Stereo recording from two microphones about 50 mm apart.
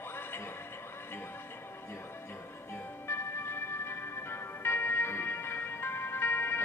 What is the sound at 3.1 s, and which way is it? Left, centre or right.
Music, left.